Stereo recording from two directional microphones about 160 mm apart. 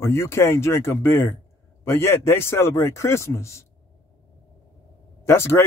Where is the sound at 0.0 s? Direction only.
15° left (ahead or behind).